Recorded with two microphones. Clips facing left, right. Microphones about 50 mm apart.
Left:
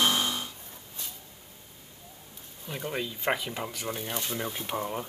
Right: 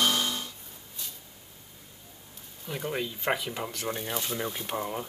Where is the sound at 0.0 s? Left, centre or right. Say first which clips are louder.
Left 1 dB; centre.